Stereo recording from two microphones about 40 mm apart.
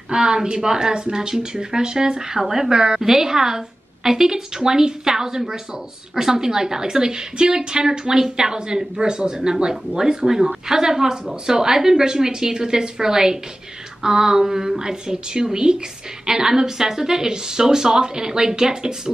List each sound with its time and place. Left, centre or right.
0.1 s a woman's voice: centre